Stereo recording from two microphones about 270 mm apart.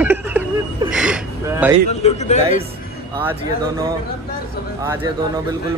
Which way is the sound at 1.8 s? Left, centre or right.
Left.